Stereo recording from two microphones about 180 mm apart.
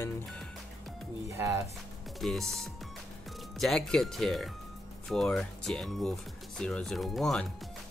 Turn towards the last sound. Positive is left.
turn(degrees=0)  # may be behind; listen again after turning